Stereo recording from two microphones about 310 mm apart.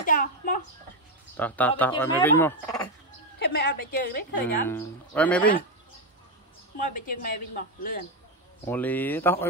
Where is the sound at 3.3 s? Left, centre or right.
Left.